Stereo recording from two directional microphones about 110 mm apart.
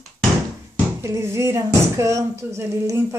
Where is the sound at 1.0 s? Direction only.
25° right (ahead or behind).